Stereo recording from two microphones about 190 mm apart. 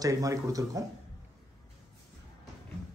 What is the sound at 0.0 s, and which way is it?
Speech, 20° right (ahead or behind).